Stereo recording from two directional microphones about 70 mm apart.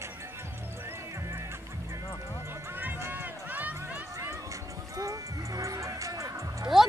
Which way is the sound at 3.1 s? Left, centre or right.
Right.